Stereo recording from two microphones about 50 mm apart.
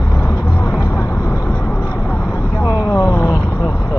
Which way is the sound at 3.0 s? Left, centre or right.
Left.